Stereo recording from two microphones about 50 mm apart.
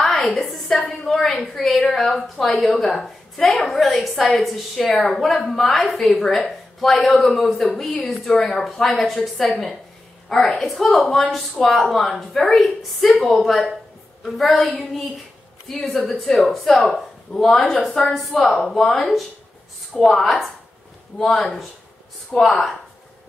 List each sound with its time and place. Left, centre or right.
0.1 s a sound: left
0.8 s a woman's voice: centre
15.8 s a woman's voice: centre